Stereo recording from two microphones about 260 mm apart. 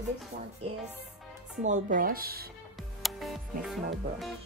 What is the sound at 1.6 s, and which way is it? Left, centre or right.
Music, right.